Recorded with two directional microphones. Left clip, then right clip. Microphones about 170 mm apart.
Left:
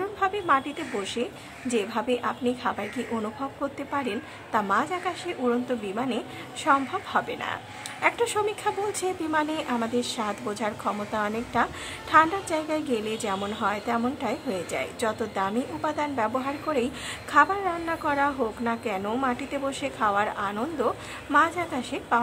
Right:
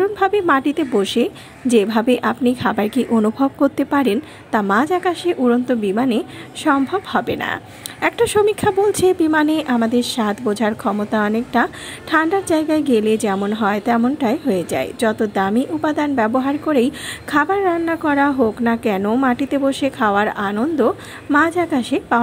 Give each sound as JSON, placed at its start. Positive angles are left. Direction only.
{"t": 0.0, "sound": "speech", "side_deg": -40}